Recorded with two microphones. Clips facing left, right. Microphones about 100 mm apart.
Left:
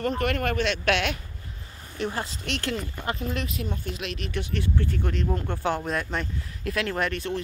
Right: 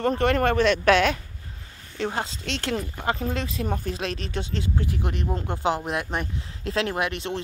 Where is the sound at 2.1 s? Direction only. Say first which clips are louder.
Right 2 dB; 25° right (ahead or behind).